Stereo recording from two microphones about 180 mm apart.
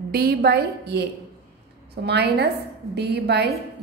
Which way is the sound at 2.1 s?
70° right (ahead or behind).